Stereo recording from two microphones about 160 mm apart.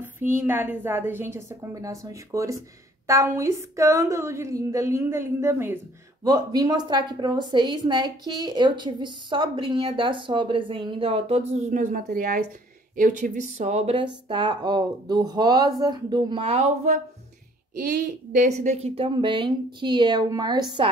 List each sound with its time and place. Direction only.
0.2 s a woman's voice: 15° right (ahead or behind); by 17.0 s 45° right (ahead or behind)
17.7 s a woman's voice: 60° right (ahead or behind); by 20.9 s 25° right (ahead or behind)